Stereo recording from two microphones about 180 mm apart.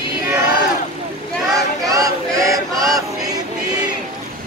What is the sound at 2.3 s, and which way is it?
Chant, 20° right (ahead or behind).